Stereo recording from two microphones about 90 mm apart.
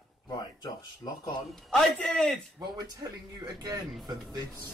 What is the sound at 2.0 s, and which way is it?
Speech, 5° left (ahead or behind).